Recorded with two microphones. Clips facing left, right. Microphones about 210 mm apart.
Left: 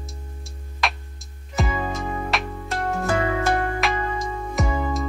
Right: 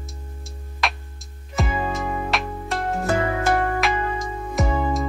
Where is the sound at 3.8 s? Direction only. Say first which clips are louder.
Right 1 dB; centre (ahead or behind).